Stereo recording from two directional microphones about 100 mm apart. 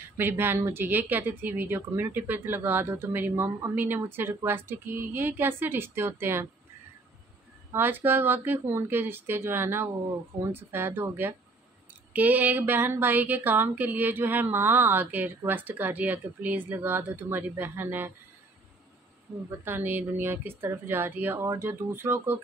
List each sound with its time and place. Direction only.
0.2 s speech: 20° right (ahead or behind)
7.7 s speech: 20° right (ahead or behind)
19.6 s speech: 20° right (ahead or behind)